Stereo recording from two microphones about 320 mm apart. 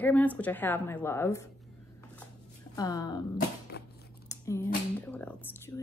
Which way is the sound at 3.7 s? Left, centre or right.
Left.